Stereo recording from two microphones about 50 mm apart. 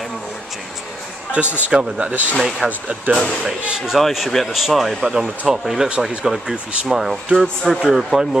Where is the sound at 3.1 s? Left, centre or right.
Right.